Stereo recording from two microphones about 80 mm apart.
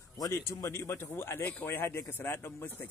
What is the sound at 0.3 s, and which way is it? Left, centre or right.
Speech, left.